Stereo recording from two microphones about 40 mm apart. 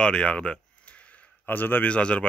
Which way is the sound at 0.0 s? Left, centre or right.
Left.